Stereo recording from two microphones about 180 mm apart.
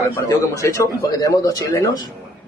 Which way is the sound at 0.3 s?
15° left (ahead or behind).